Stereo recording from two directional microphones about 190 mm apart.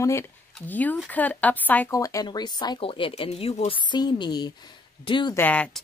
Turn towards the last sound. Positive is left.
turn(degrees=5)  # may be behind; listen again after turning